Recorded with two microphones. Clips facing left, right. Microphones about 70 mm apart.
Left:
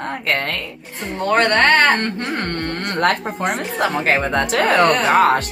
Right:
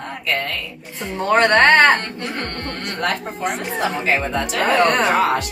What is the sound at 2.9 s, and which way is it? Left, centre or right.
Speech, left.